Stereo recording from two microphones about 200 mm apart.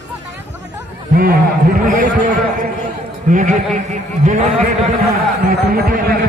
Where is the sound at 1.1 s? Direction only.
50° right (ahead or behind).